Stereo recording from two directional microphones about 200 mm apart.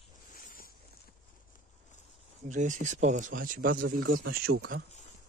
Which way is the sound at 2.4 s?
35° right (ahead or behind).